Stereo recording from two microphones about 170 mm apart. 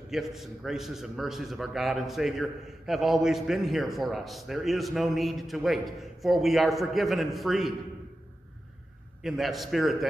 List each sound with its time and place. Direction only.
0.1 s a man's voice: centre (ahead or behind)
9.2 s a man's voice: centre (ahead or behind)